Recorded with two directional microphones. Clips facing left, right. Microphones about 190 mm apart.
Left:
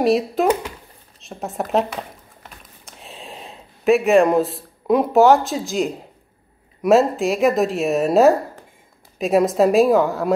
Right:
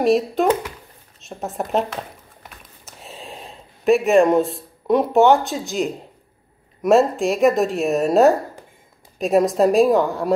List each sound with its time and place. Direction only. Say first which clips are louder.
0.0 s a woman's voice: even; centre (ahead or behind)
2.8 s a sound: right 1 dB; centre (ahead or behind)
6.8 s a woman's voice: even; centre (ahead or behind)